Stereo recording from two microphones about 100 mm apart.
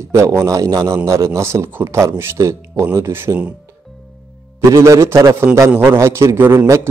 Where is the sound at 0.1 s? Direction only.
30° right (ahead or behind).